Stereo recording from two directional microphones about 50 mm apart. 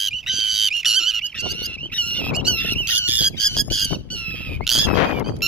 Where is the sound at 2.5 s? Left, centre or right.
Left.